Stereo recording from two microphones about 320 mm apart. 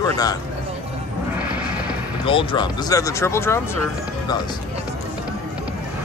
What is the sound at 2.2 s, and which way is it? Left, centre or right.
Speech, centre.